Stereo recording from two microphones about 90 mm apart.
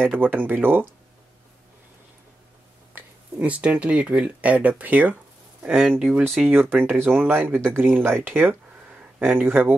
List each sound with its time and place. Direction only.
0.2 s speech: 20° right (ahead or behind)
2.9 s speech: 15° right (ahead or behind)
5.6 s speech: 5° right (ahead or behind)
6.4 s speech: 20° right (ahead or behind)